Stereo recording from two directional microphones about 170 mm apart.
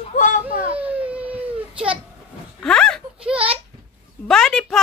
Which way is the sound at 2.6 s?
5° left (ahead or behind).